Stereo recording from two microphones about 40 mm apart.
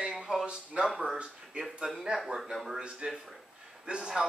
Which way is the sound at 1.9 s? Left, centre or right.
Centre.